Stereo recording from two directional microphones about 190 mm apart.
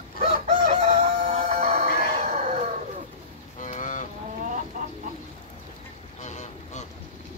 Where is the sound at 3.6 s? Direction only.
40° left (ahead or behind).